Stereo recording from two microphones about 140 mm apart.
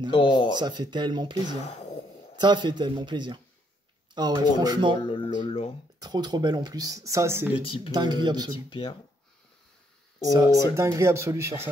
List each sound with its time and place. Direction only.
0.1 s speech: 35° left (ahead or behind)
0.6 s speech: 30° right (ahead or behind)
5.0 s speech: 40° left (ahead or behind)
5.4 s a sound: 40° left (ahead or behind)
5.9 s speech: 30° right (ahead or behind)
7.5 s speech: 40° left (ahead or behind)
7.9 s speech: 30° right (ahead or behind)
8.6 s speech: 35° left (ahead or behind)
10.2 s speech: 25° right (ahead or behind)